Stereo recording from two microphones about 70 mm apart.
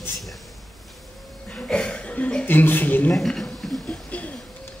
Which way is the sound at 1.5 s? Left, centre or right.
Centre.